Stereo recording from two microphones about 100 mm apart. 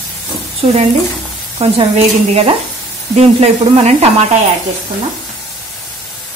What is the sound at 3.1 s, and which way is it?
Sizzle, 90° right.